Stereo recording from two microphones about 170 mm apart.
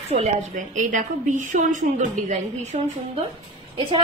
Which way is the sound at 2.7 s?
35° right (ahead or behind).